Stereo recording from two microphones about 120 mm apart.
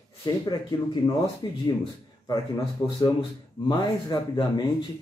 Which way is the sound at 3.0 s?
40° left (ahead or behind).